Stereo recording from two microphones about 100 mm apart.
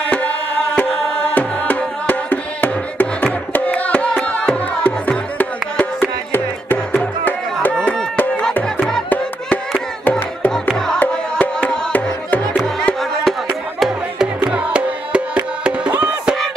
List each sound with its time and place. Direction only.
0.1 s music: 15° left (ahead or behind)
10.0 s music: 20° left (ahead or behind)
12.6 s music: 5° left (ahead or behind); by 16.0 s 15° right (ahead or behind)